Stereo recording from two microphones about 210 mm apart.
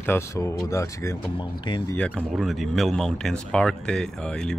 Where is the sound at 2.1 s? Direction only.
Centre (ahead or behind).